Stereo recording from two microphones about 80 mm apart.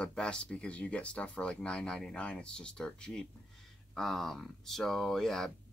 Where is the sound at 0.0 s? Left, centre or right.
Centre.